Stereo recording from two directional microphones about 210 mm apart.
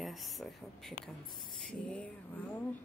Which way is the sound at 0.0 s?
Centre (ahead or behind).